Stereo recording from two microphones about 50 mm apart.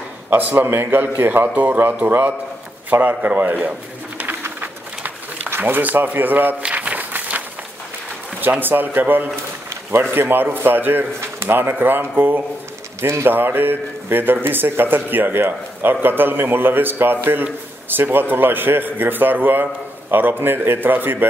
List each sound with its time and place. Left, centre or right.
0.4 s speech: right
4.6 s a sound: right
5.6 s speech: right
6.6 s a sound: right
8.4 s speech: right
13.0 s speech: right
13.3 s speech: right